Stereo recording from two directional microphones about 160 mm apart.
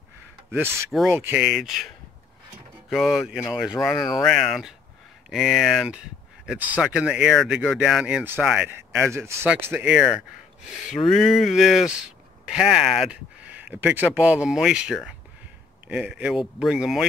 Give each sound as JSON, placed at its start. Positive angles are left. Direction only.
{"t": 1.0, "sound": "speech", "side_deg": -15}
{"t": 1.4, "sound": "speech", "side_deg": 0}
{"t": 2.9, "sound": "speech", "side_deg": 0}